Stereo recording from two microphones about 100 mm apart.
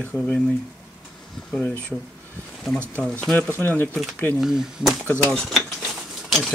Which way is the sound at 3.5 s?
20° left (ahead or behind).